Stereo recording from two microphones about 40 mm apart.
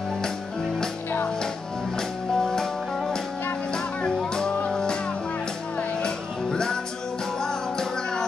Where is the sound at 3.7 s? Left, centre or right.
Left.